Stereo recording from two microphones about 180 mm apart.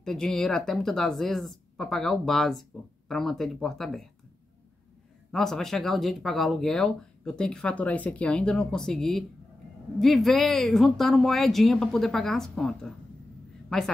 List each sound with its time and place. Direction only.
0.0 s speech: 5° left (ahead or behind)
5.3 s a woman's voice: 5° left (ahead or behind)